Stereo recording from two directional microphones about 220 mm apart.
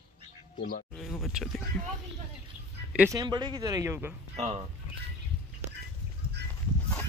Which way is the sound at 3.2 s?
20° right (ahead or behind).